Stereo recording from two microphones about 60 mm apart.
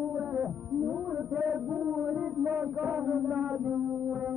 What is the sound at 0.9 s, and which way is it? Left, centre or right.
Speech, centre.